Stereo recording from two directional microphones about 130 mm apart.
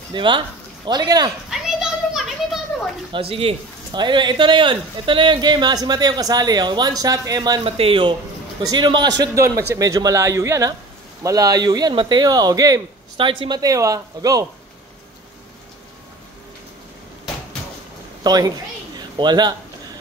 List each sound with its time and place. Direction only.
0.1 s speech: 40° right (ahead or behind)
1.5 s children playing: centre (ahead or behind)
3.1 s speech: 45° right (ahead or behind)
7.6 s a man's voice: 45° right (ahead or behind); by 14.4 s 25° right (ahead or behind)
18.2 s a woman's voice: 30° right (ahead or behind)